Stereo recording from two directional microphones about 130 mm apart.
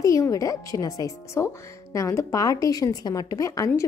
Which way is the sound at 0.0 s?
25° left (ahead or behind).